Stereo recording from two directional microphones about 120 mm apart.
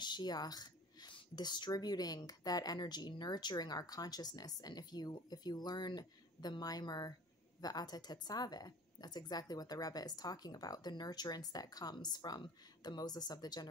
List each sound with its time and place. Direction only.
0.0 s a woman's voice: 35° left (ahead or behind)